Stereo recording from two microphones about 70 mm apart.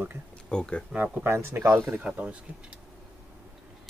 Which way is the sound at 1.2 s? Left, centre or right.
Right.